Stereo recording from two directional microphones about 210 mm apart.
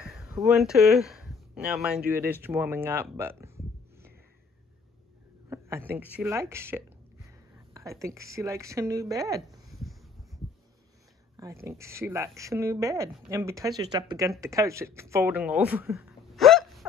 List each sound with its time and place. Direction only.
0.0 s speech: 5° right (ahead or behind)
5.5 s a woman's voice: 10° right (ahead or behind)
9.7 s a sound: centre (ahead or behind)
11.3 s speech: 15° right (ahead or behind)